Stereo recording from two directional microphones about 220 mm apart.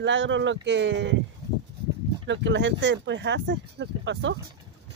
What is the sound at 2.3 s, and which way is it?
Speech, 55° right (ahead or behind).